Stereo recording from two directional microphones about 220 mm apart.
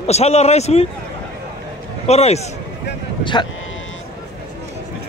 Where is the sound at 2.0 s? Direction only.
30° left (ahead or behind).